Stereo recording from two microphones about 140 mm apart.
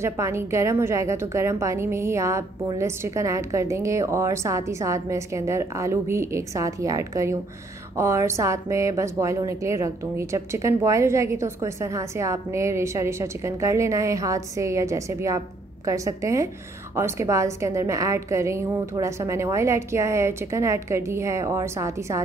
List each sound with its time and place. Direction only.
0.0 s speech: 20° right (ahead or behind)